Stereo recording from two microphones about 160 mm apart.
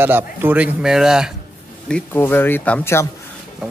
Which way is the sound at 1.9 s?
10° left (ahead or behind).